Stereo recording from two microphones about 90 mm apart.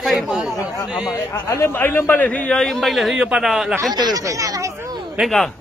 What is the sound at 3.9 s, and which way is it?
Speech, 50° right (ahead or behind).